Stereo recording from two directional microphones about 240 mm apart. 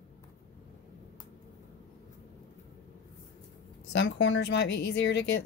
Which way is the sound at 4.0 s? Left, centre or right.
Left.